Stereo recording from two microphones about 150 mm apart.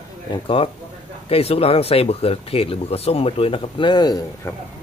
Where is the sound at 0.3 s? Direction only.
35° left (ahead or behind).